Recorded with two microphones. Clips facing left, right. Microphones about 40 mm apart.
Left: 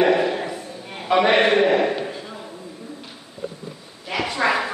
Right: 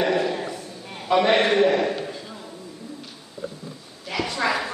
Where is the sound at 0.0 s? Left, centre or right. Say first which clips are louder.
Left 4 dB; centre.